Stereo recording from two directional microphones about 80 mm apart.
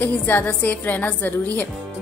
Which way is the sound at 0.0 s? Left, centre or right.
Left.